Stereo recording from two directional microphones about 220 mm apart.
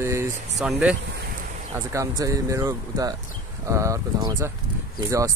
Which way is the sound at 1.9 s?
15° right (ahead or behind).